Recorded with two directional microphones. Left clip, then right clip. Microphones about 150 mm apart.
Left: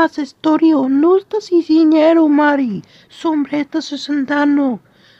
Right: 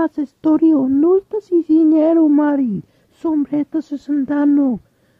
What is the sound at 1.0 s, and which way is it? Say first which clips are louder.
Speech: left 3 dB; 25° right (ahead or behind).